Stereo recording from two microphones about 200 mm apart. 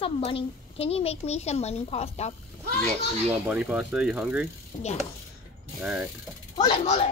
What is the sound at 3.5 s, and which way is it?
Speech, 5° right (ahead or behind).